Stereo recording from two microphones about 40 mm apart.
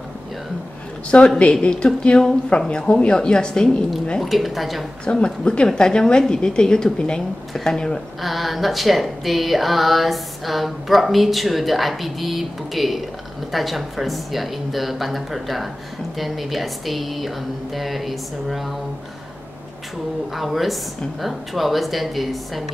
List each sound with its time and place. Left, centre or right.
1.1 s a woman's voice: left; by 3.7 s centre
4.2 s speech: centre
5.0 s a woman's voice: left
8.2 s speech: centre
20.3 s speech: centre